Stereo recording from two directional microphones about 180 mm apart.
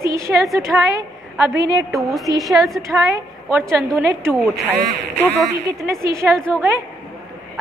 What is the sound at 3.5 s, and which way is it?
A woman's voice, 10° right (ahead or behind).